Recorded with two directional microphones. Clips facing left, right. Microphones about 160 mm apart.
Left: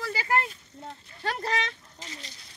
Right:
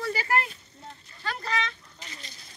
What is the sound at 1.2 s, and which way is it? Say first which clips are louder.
Speech: left 2 dB; 70° left (ahead or behind).